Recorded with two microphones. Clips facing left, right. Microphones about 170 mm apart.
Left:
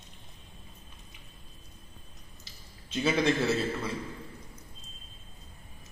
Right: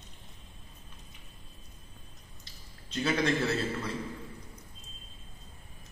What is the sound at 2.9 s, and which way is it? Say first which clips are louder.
Speech: left 2 dB; 5° left (ahead or behind).